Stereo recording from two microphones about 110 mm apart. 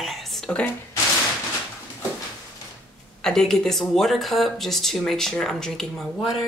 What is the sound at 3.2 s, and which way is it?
Speech, 5° left (ahead or behind).